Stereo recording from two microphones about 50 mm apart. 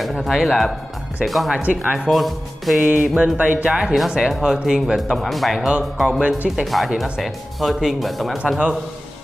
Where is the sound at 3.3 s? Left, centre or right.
Right.